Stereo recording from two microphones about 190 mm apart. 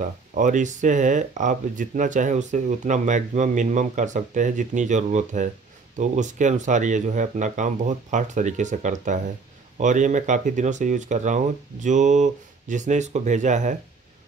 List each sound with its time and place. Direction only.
0.0 s speech: 40° right (ahead or behind)